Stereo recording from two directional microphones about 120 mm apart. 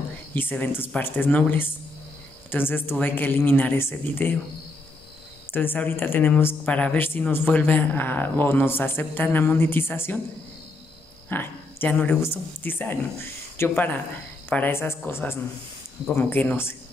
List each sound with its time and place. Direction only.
0.3 s speech: 15° left (ahead or behind)
5.5 s speech: 15° left (ahead or behind)
11.2 s a sound: 15° left (ahead or behind)
12.2 s speech: 15° left (ahead or behind)